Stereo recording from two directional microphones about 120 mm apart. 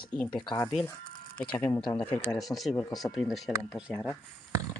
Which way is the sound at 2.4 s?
Centre (ahead or behind).